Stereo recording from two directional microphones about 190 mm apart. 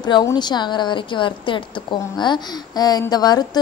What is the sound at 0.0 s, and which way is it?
A woman's voice, 20° left (ahead or behind).